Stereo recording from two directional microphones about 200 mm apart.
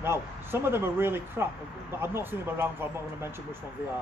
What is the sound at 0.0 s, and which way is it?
Speech, 10° right (ahead or behind).